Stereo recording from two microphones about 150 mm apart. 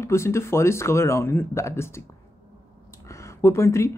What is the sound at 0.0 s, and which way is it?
A woman's voice, 20° left (ahead or behind).